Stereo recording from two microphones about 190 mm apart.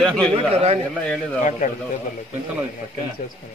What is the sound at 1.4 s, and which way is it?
Speech, 40° left (ahead or behind).